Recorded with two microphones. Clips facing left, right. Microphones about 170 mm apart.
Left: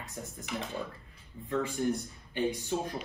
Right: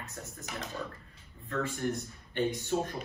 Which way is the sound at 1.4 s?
15° left (ahead or behind).